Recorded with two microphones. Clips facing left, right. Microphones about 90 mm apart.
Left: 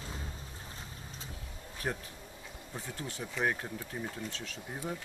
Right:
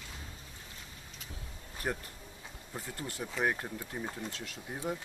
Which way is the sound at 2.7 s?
5° right (ahead or behind).